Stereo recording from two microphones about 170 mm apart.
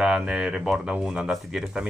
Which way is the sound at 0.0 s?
5° right (ahead or behind).